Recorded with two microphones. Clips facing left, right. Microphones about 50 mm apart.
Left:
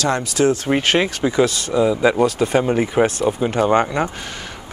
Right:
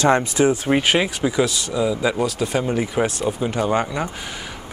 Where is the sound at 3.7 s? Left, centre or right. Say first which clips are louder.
Left 5 dB; centre.